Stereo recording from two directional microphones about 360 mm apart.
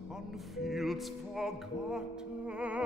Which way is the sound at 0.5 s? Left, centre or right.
Centre.